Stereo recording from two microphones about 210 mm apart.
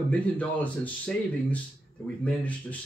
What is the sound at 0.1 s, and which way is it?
Speech, 5° left (ahead or behind).